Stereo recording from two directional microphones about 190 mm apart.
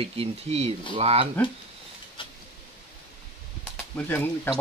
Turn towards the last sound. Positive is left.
turn(degrees=10)  # may be behind; listen again after turning